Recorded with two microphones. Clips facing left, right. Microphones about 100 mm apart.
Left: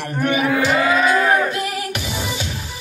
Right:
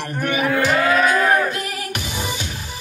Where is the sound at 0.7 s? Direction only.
5° left (ahead or behind).